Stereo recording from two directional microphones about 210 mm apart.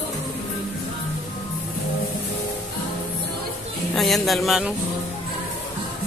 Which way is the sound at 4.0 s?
Centre (ahead or behind).